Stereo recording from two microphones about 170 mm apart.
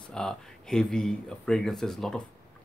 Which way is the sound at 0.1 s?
5° left (ahead or behind).